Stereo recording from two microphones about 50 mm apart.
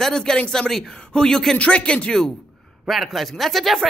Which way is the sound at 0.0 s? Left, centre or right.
Centre.